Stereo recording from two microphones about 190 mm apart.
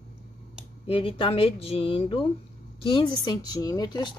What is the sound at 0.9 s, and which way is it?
Speech, 30° left (ahead or behind).